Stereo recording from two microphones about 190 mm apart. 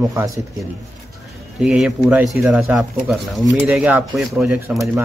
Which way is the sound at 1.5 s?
5° right (ahead or behind).